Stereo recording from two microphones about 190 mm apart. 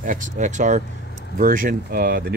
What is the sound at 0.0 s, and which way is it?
A man's voice, 40° right (ahead or behind).